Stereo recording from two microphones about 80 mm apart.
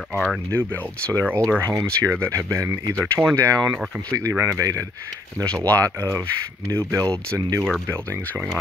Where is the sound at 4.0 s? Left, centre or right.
Right.